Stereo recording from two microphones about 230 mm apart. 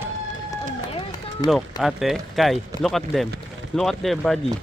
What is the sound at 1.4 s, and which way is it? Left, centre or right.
Speech, centre.